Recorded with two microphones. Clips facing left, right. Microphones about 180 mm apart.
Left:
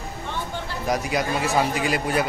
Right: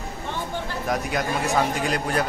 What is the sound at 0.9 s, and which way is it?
Speech, centre (ahead or behind).